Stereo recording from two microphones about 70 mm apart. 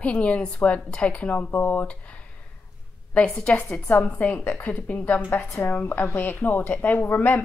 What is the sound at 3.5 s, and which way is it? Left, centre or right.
Speech, left.